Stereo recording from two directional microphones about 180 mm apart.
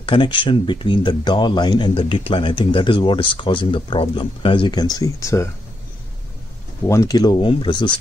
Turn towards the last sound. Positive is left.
turn(degrees=25)  # may be behind; listen again after turning